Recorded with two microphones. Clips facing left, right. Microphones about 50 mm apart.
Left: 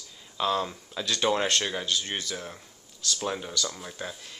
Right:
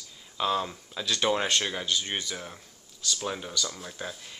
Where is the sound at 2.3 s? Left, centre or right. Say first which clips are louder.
Left 2 dB; centre.